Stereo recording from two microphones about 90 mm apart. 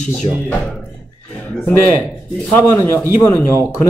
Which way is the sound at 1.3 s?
20° left (ahead or behind).